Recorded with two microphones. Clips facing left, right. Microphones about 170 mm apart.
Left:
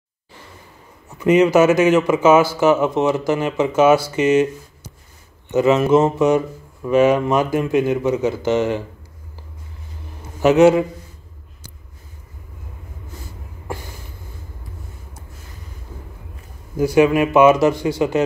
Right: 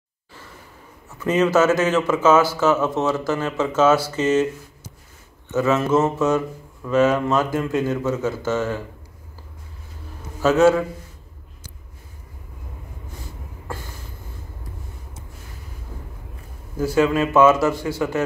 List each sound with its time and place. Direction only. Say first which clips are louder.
1.1 s speech: left 5 dB; 15° left (ahead or behind)
5.5 s speech: left 5 dB; 15° left (ahead or behind)
10.4 s speech: left 4 dB; 15° left (ahead or behind)
16.7 s speech: left 4 dB; 15° left (ahead or behind)